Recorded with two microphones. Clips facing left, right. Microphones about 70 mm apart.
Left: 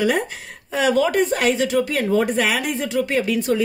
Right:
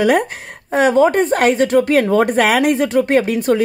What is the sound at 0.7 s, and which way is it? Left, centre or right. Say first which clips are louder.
A woman's voice: right 6 dB; right.